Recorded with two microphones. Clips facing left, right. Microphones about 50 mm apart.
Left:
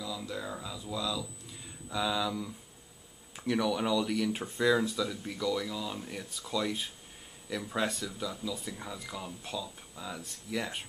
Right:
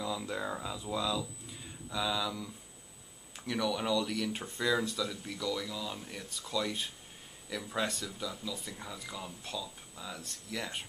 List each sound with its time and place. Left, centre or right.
0.3 s speech: centre
1.9 s speech: centre